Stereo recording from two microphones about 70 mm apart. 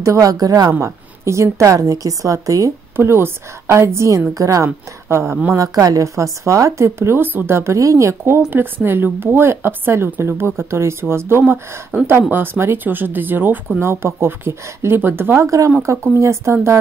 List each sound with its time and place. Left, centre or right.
0.0 s a woman's voice: right
0.8 s speech: right
3.0 s speech: right
5.1 s speech: right
5.5 s speech: right
15.4 s speech: right